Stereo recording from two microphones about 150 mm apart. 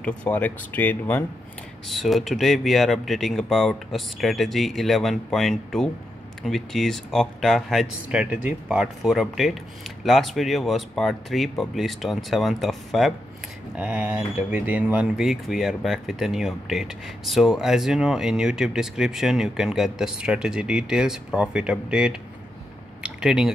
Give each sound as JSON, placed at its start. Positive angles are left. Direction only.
{"t": 0.2, "sound": "speech", "side_deg": 10}
{"t": 1.9, "sound": "speech", "side_deg": 0}
{"t": 23.0, "sound": "a sound", "side_deg": -5}